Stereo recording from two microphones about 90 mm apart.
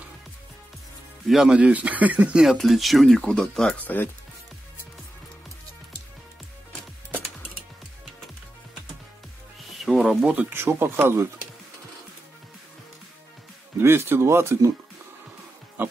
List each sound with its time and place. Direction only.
1.2 s speech: 5° right (ahead or behind)
1.7 s speech: 15° right (ahead or behind)
2.5 s speech: centre (ahead or behind)
3.7 s speech: 20° left (ahead or behind)
9.6 s music: centre (ahead or behind)
10.2 s speech: 15° right (ahead or behind)
10.5 s speech: 25° right (ahead or behind)
13.7 s speech: 25° right (ahead or behind)
15.8 s a sound: 20° right (ahead or behind)